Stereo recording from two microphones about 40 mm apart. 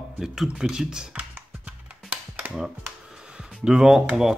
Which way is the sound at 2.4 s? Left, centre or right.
Right.